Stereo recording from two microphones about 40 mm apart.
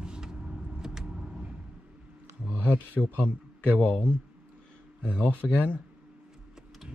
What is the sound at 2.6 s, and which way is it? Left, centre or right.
Speech, left.